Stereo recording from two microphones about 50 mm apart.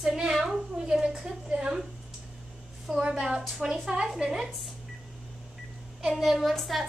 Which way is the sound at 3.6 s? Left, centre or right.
Centre.